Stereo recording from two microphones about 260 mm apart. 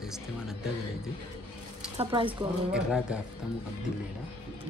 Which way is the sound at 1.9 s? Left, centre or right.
Centre.